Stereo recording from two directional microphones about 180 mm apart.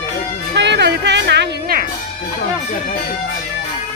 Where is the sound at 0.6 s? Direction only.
70° right (ahead or behind).